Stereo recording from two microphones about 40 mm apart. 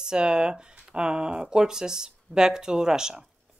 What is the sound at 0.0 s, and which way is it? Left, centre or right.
Speech, right.